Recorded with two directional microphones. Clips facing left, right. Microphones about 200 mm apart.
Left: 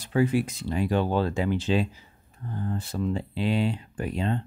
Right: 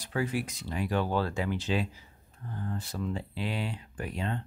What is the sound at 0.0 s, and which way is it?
Speech, 25° left (ahead or behind).